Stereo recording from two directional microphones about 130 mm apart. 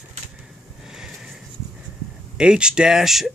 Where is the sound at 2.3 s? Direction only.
5° right (ahead or behind).